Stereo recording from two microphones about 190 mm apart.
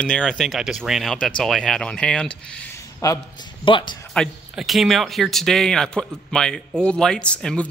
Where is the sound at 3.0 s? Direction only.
20° left (ahead or behind).